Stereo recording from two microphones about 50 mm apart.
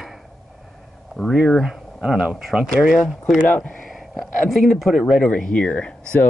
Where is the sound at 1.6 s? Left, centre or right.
Centre.